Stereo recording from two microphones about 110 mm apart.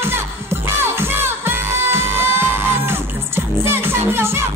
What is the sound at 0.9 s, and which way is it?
Music, 20° right (ahead or behind).